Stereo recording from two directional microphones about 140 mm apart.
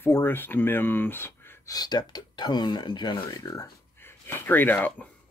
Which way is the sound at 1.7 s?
30° left (ahead or behind).